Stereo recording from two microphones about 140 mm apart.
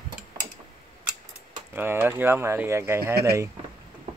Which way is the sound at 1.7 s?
15° right (ahead or behind).